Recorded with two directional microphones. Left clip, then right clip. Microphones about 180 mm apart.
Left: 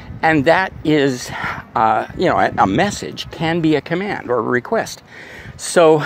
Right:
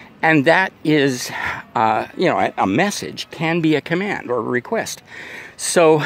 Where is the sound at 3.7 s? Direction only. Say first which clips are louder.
Left 1 dB; 60° right (ahead or behind).